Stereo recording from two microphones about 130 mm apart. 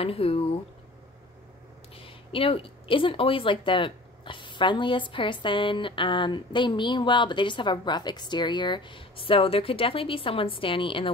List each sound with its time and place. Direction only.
0.0 s speech: 45° left (ahead or behind)
2.0 s speech: 45° left (ahead or behind)